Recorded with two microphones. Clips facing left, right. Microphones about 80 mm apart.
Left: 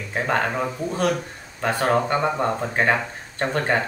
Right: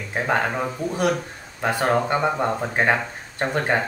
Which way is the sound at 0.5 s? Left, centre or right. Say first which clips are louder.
Even; centre.